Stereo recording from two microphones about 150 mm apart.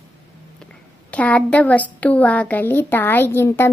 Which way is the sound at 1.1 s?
10° left (ahead or behind).